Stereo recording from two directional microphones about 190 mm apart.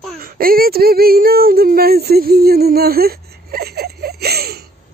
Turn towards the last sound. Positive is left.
turn(degrees=-55)  # may be behind; listen again after turning